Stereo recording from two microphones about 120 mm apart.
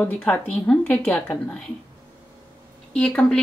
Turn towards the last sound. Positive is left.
turn(degrees=10)  # may be behind; listen again after turning